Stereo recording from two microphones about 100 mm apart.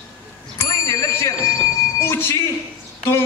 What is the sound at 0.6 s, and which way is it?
Bicycle bell, 30° left (ahead or behind).